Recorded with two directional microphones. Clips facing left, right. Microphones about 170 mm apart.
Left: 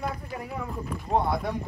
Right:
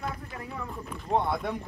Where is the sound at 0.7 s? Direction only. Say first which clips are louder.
Left 1 dB; centre (ahead or behind).